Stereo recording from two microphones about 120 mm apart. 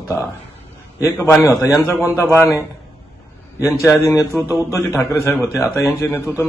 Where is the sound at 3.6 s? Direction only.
25° left (ahead or behind).